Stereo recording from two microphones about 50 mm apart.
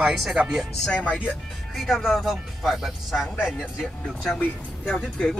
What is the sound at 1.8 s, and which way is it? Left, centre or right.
Speech, centre.